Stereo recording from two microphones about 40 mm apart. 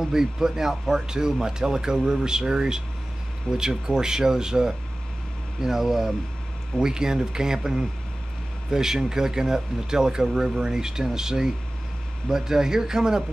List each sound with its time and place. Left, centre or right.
0.0 s speech: centre